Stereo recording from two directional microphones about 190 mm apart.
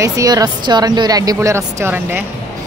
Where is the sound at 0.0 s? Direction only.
20° right (ahead or behind).